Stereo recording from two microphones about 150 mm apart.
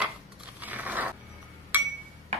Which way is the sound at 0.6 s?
10° right (ahead or behind).